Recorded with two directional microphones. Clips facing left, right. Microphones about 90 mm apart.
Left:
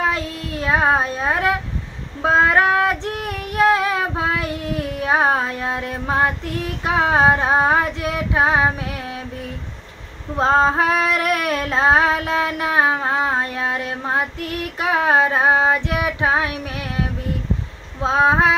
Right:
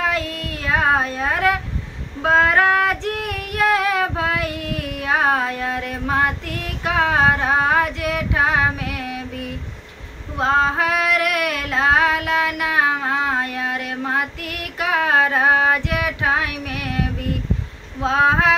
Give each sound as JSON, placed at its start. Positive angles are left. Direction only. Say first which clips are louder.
{"t": 0.0, "sound": "a sound", "louder": "even", "side_deg": 25}
{"t": 2.2, "sound": "child singing", "louder": "even", "side_deg": 25}
{"t": 10.3, "sound": "female singing", "louder": "left 2 dB", "side_deg": 30}